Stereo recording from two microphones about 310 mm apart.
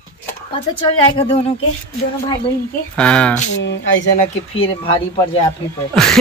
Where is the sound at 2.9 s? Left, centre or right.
Centre.